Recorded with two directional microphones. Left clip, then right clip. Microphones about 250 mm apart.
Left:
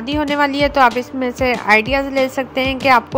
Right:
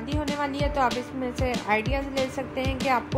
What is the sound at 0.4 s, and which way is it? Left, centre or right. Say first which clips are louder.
A woman's voice: left 13 dB; left.